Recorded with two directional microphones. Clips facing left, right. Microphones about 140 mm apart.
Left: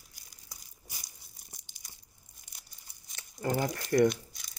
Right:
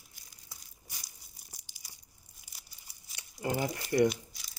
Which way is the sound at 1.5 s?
5° right (ahead or behind).